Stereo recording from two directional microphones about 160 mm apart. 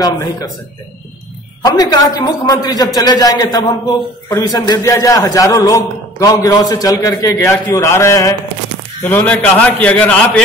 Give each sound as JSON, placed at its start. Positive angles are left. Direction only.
{"t": 1.6, "sound": "a man's voice", "side_deg": 25}